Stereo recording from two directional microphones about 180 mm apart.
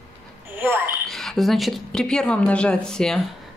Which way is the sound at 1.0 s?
Centre (ahead or behind).